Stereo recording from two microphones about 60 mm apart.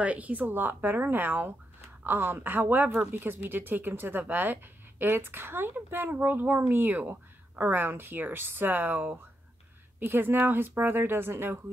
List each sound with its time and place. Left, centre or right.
0.0 s speech: right